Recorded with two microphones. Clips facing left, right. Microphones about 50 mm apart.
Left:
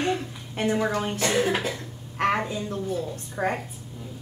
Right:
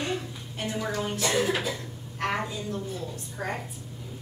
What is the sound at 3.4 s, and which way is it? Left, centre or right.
Speech, left.